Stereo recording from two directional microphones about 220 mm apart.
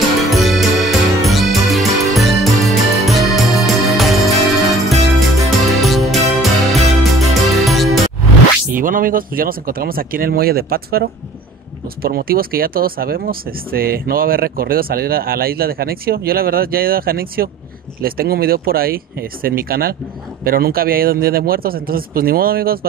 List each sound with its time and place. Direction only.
0.3 s music: centre (ahead or behind)
8.7 s speech: 40° right (ahead or behind)